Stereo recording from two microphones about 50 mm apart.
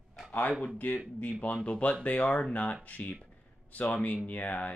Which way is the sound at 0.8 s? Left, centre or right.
Left.